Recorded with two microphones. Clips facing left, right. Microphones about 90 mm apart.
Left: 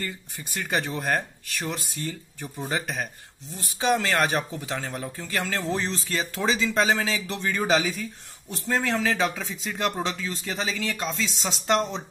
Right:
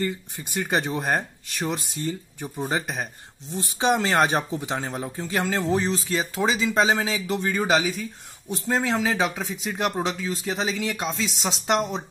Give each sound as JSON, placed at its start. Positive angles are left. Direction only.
{"t": 0.0, "sound": "speech", "side_deg": -20}